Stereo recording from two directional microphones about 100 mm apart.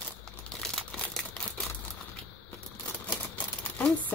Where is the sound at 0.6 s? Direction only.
5° left (ahead or behind).